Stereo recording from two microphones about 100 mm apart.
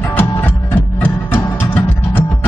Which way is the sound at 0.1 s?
20° left (ahead or behind).